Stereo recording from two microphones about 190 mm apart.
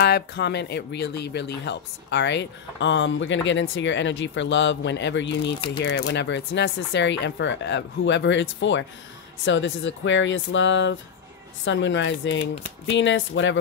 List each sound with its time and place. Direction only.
0.0 s speech: 60° left (ahead or behind)